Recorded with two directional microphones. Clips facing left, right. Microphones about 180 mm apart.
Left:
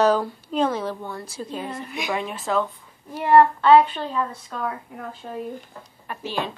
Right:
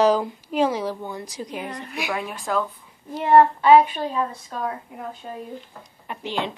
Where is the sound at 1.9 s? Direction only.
5° right (ahead or behind).